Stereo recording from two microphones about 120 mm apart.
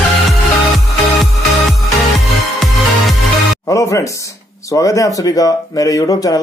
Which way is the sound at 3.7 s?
25° left (ahead or behind).